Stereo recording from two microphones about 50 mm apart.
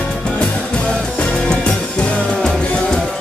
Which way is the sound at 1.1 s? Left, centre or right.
Centre.